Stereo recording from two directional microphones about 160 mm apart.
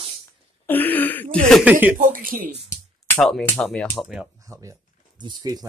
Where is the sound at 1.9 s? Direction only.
60° right (ahead or behind).